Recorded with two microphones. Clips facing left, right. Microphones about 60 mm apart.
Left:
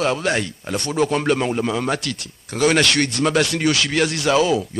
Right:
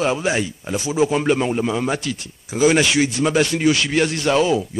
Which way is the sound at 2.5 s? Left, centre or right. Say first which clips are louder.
Right 1 dB; left.